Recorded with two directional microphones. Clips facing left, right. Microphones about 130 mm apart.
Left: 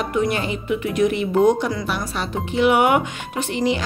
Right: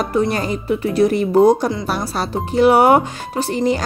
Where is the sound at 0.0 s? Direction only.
35° right (ahead or behind).